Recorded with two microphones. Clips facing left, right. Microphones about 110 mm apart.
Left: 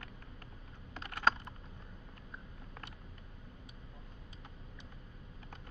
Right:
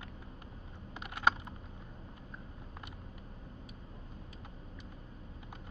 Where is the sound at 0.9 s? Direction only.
15° right (ahead or behind).